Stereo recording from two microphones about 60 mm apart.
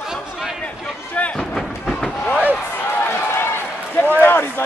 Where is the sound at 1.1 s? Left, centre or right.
Left.